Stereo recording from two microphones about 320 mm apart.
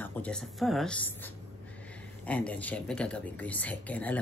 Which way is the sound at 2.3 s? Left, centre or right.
Centre.